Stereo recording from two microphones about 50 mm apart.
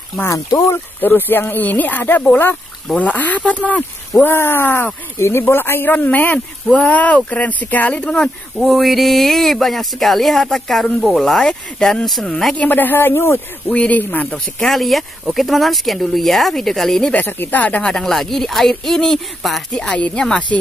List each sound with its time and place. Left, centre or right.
1.0 s speech: left
4.2 s speech: left
6.0 s speech: left
8.0 s speech: centre
8.5 s speech: centre
12.5 s speech: left
13.7 s speech: left
14.6 s speech: centre
17.1 s speech: left
17.8 s speech: centre
19.8 s speech: centre